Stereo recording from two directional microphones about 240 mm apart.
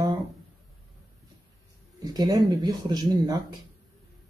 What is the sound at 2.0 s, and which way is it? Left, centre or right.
Speech, centre.